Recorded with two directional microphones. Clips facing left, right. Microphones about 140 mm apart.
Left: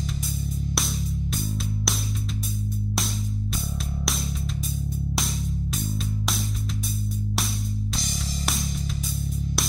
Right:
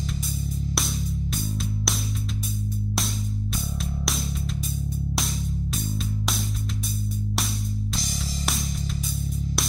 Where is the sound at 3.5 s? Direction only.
Centre (ahead or behind).